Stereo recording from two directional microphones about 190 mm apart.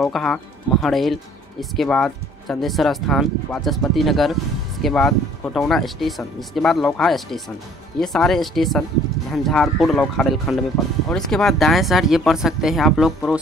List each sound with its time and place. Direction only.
0.0 s speech: centre (ahead or behind)